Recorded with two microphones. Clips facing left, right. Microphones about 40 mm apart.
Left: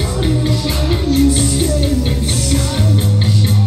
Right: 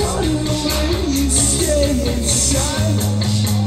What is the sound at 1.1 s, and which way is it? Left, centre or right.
Music, left.